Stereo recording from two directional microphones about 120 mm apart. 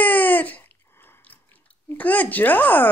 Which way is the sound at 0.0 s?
15° left (ahead or behind).